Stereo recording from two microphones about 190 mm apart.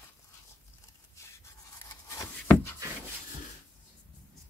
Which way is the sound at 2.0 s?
15° left (ahead or behind).